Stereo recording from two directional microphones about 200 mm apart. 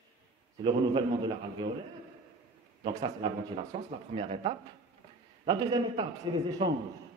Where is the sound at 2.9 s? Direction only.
30° right (ahead or behind).